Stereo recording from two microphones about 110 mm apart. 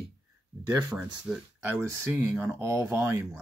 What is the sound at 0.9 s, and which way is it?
Speech, centre (ahead or behind).